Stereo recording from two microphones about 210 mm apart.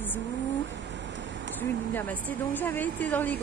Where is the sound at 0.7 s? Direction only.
60° right (ahead or behind).